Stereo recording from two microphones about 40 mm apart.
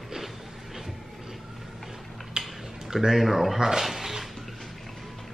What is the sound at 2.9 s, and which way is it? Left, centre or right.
Speech, centre.